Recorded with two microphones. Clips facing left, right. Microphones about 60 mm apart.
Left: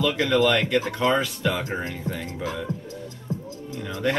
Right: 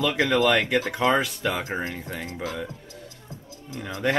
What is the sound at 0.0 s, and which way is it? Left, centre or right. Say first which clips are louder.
Speech: left 1 dB; centre.